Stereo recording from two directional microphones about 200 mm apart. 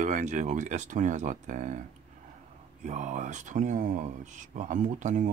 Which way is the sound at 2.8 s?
40° right (ahead or behind).